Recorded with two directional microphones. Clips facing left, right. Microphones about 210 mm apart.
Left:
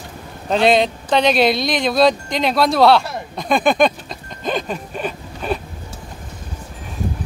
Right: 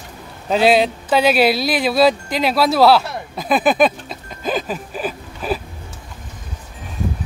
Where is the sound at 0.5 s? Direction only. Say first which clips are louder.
Right 1 dB; 5° right (ahead or behind).